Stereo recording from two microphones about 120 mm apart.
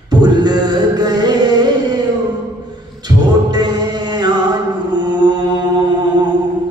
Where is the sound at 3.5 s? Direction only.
35° right (ahead or behind).